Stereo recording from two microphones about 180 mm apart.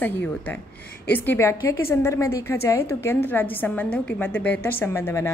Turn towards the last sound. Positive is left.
turn(degrees=15)  # may be behind; listen again after turning